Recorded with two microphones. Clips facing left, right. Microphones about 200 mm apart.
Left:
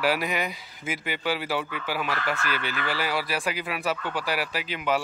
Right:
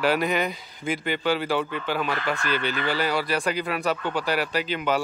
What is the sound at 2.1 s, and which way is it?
Speech, 20° right (ahead or behind).